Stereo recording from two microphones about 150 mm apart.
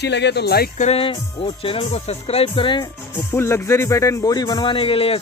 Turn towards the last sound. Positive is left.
turn(degrees=40)  # may be behind; listen again after turning